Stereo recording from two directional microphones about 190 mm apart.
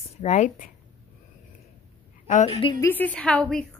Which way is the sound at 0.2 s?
40° left (ahead or behind).